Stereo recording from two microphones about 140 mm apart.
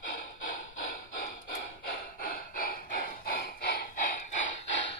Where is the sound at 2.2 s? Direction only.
90° left; by 4.5 s 65° left (ahead or behind).